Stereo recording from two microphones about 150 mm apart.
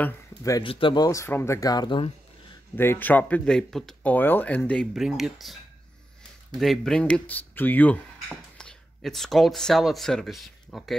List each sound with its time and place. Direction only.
0.4 s speech: 20° left (ahead or behind)
0.7 s speech: 35° left (ahead or behind)
2.7 s speech: 15° left (ahead or behind)